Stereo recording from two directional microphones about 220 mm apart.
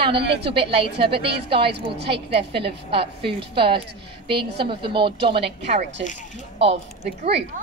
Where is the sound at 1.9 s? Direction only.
50° right (ahead or behind).